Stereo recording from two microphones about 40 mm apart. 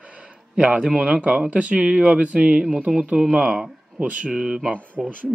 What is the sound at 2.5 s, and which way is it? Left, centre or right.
Speech, right.